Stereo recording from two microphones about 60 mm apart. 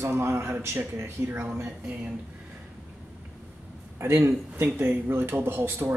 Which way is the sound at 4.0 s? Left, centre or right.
Right.